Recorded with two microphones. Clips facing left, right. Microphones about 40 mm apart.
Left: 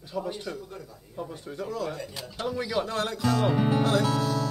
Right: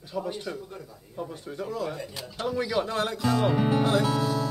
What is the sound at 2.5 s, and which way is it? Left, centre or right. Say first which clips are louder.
Speech: right 2 dB; centre.